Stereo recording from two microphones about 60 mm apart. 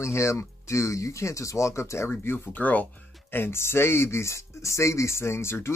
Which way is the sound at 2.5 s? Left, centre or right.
Left.